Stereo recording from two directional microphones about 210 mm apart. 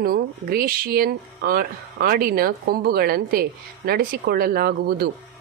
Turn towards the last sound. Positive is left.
turn(degrees=-45)  # may be behind; listen again after turning